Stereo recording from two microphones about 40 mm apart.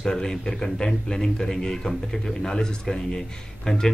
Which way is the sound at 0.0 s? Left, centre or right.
Centre.